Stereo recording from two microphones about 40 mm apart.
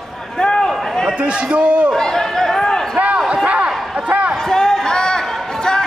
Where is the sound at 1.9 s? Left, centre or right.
Centre.